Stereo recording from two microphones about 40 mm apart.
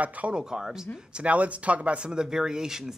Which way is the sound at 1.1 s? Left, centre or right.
Right.